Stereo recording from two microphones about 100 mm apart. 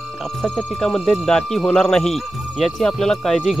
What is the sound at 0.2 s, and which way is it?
Speech, 5° left (ahead or behind).